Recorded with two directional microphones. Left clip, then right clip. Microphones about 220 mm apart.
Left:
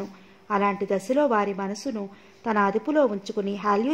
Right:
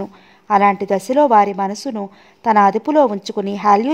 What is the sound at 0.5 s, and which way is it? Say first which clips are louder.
A woman's voice: right 10 dB; 40° right (ahead or behind).